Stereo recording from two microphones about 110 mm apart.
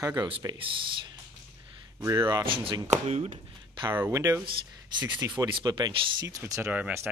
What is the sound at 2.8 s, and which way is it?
Speech, 85° right.